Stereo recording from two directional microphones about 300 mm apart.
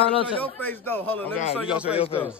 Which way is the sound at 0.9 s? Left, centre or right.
Centre.